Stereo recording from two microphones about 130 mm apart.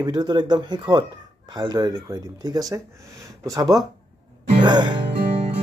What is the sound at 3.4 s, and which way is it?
Speech, 30° right (ahead or behind).